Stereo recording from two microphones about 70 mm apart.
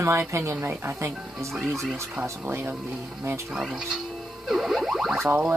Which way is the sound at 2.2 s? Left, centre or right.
Right.